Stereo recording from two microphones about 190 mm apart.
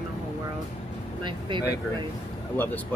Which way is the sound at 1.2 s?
25° right (ahead or behind).